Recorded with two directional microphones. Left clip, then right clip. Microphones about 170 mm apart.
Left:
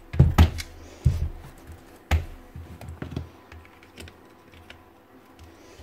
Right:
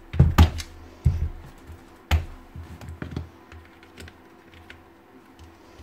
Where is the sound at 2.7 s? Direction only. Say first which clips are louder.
Even; 5° left (ahead or behind).